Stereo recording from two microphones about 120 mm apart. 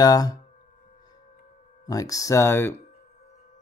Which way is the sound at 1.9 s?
30° left (ahead or behind).